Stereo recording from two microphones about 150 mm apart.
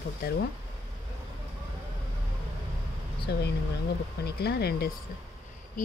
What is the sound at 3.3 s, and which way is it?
Speech, 90° left.